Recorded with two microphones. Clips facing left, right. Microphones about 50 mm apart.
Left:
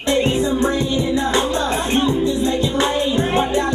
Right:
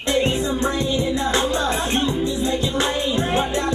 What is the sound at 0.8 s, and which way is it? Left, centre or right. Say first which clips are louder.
Music: left 2 dB; centre.